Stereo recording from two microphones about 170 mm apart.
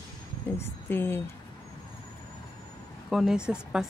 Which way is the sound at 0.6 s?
10° left (ahead or behind).